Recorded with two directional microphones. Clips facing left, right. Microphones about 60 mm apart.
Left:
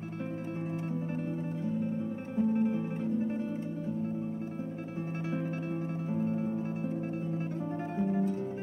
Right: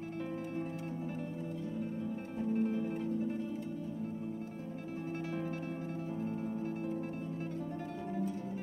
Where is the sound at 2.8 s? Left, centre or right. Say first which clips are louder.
Left 3 dB; left.